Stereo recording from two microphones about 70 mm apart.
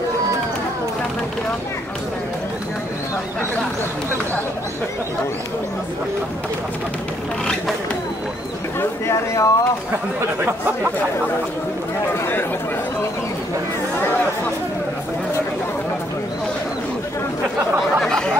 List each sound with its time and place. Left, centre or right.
9.0 s speech: left
12.1 s speech: left
14.0 s chatter: left
18.0 s a sound: centre